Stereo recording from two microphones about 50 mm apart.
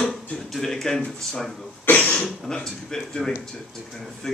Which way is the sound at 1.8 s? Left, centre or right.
Left.